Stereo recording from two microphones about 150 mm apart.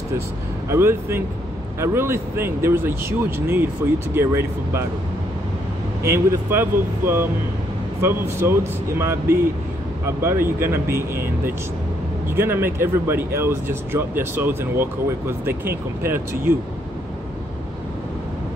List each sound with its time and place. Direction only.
0.7 s speech: 15° right (ahead or behind)
6.0 s speech: 15° right (ahead or behind)
12.3 s speech: 15° right (ahead or behind)